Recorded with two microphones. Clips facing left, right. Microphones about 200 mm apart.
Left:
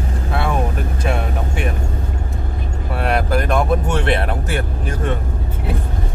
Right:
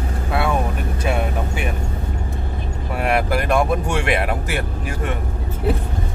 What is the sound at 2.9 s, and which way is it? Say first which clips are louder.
Vehicle: left 1 dB; 5° right (ahead or behind).